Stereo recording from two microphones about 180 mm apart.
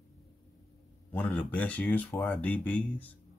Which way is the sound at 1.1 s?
5° left (ahead or behind).